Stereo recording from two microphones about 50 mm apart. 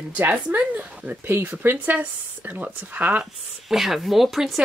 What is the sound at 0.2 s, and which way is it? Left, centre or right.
Speech, right.